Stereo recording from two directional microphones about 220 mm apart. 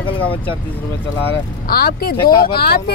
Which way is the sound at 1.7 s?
45° left (ahead or behind).